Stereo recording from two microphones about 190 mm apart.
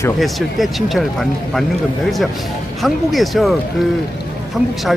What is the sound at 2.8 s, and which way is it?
Speech, centre (ahead or behind).